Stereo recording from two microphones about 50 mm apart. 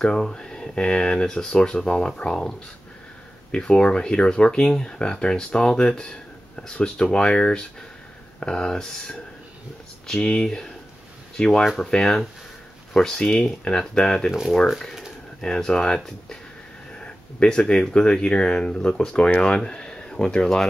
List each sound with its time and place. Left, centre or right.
0.0 s speech: centre
3.5 s speech: centre
15.4 s speech: centre